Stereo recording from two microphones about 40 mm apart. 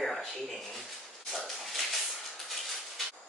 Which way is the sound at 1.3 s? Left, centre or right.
Centre.